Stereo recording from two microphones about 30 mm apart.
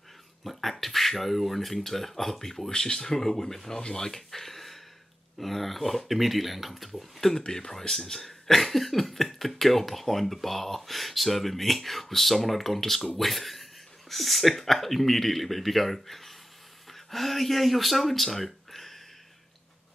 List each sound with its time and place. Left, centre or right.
0.4 s speech: centre
7.3 s speech: left